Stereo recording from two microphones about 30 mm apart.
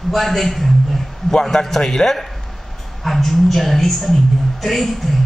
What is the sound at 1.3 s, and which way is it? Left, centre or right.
Speech, left.